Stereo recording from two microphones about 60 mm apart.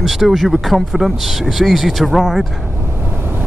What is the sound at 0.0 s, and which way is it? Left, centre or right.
Speech, centre.